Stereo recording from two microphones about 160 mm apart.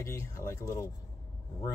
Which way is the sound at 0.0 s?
15° left (ahead or behind).